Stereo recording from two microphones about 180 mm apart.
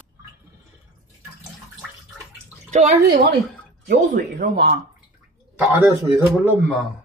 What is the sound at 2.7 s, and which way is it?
Speech, 40° right (ahead or behind).